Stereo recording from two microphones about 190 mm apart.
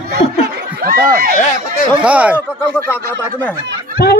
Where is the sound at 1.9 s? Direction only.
5° right (ahead or behind).